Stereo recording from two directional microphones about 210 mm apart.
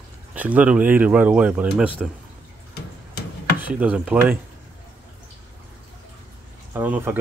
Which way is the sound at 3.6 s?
5° right (ahead or behind).